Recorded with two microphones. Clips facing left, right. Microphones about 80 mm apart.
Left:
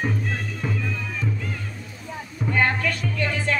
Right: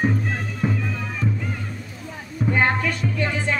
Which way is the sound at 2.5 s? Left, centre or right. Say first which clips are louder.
Right 1 dB; centre.